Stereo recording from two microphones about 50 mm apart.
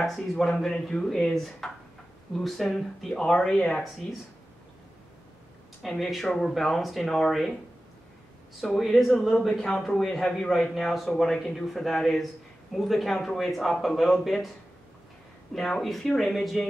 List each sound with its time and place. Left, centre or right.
0.0 s a man's voice: centre
3.0 s speech: centre
5.9 s a man's voice: centre
8.6 s a man's voice: centre
9.8 s a man's voice: centre
15.5 s a man's voice: centre